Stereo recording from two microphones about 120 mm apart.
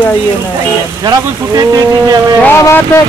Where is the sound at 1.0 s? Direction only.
35° right (ahead or behind).